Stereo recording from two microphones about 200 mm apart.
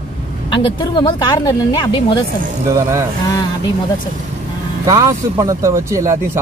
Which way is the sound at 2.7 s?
15° right (ahead or behind).